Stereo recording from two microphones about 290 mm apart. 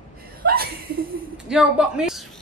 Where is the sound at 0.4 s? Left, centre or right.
Right.